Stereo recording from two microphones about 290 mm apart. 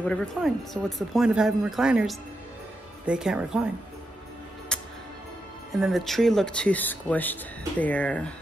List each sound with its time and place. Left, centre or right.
0.0 s speech: centre
4.7 s music: centre
5.7 s speech: centre